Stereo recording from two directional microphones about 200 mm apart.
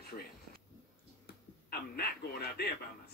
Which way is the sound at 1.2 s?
50° left (ahead or behind).